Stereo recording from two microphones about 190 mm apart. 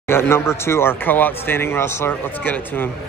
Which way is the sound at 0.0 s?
15° left (ahead or behind).